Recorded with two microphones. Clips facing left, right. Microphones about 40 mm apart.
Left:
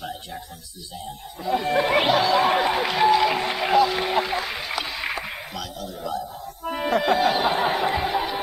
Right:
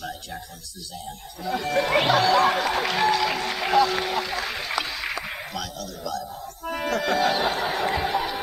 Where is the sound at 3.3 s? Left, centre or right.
Centre.